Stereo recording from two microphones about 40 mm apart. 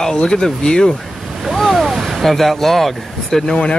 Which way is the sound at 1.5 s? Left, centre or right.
Centre.